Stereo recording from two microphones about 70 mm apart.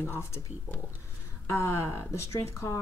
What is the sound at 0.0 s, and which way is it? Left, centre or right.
Speech, left.